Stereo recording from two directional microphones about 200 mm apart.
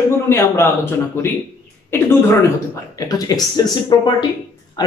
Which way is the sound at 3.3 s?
20° left (ahead or behind).